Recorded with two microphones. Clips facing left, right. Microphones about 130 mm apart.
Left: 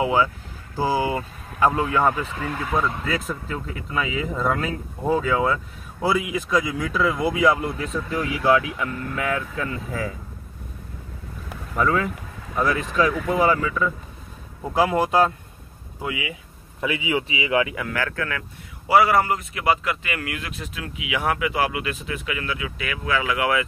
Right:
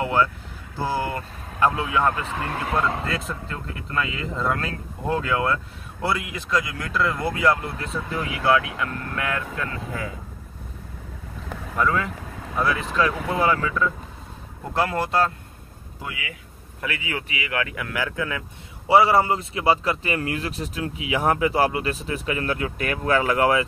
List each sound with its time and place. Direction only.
0.0 s speech: 10° left (ahead or behind)
3.1 s speech: centre (ahead or behind)
11.4 s vehicle: 5° left (ahead or behind)
12.5 s speech: centre (ahead or behind); by 17.6 s 20° left (ahead or behind)
17.6 s speech: centre (ahead or behind)
17.9 s speech: 15° right (ahead or behind)
18.9 s speech: 25° right (ahead or behind)